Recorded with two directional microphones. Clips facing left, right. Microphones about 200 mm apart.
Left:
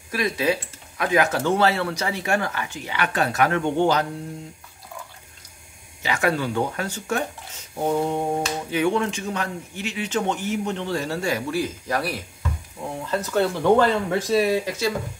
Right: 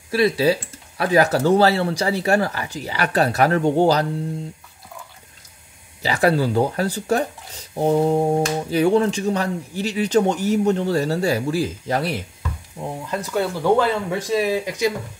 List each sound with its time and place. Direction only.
0.1 s speech: 30° right (ahead or behind)
6.0 s speech: 35° right (ahead or behind)
13.1 s speech: 10° right (ahead or behind)